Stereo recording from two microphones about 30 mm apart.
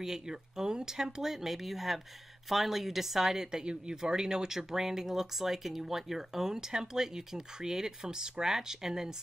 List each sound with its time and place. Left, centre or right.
0.0 s speech: centre
1.3 s speech: centre
3.6 s speech: right